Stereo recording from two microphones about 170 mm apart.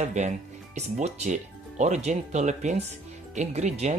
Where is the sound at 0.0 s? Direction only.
45° right (ahead or behind).